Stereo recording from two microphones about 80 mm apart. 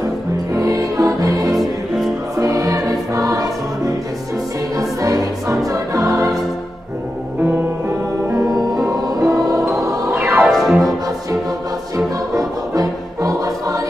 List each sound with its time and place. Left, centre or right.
0.6 s music: right
1.5 s music: centre
2.3 s music: right
8.8 s music: right
9.5 s choir: right
10.1 s music: right
10.4 s music: centre
12.4 s music: right